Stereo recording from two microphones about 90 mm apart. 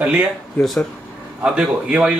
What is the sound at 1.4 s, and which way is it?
Speech, 10° right (ahead or behind).